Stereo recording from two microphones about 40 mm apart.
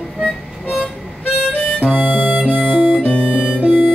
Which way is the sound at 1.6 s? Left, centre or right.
Left.